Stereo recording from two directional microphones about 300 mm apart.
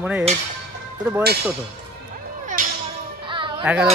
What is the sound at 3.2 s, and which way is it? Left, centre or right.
Music, centre.